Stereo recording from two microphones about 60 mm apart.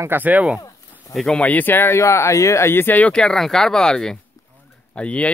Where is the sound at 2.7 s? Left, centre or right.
Left.